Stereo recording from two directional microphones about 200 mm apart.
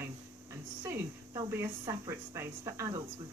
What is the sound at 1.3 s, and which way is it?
Speech, 15° right (ahead or behind).